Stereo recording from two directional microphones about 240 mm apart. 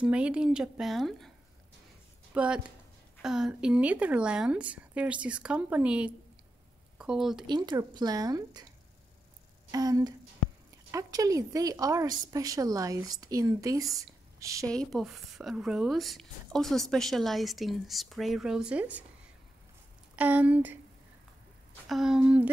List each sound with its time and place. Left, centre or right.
0.0 s speech: centre
2.3 s speech: centre
7.4 s speech: centre
9.7 s speech: centre
14.7 s speech: centre
20.2 s speech: centre
21.8 s speech: centre